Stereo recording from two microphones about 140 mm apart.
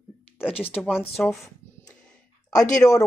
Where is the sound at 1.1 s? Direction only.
Centre (ahead or behind).